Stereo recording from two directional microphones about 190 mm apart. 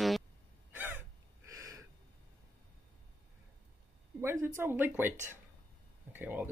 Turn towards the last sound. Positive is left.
turn(degrees=-10)  # may be behind; listen again after turning